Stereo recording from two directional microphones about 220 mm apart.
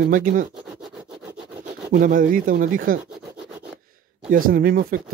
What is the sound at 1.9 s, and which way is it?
Speech, 40° right (ahead or behind).